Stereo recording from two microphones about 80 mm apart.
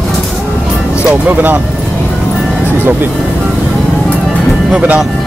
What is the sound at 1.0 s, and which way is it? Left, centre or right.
Speech, centre.